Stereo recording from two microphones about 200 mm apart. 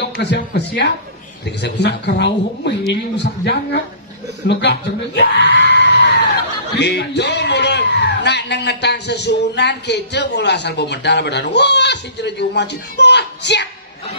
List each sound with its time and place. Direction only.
0.2 s a man's voice: 50° left (ahead or behind)